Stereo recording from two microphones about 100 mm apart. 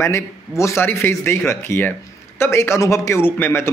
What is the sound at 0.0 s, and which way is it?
Speech, 30° left (ahead or behind).